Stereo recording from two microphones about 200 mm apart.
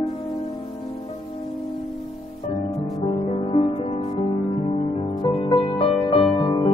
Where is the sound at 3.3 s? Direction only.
30° left (ahead or behind).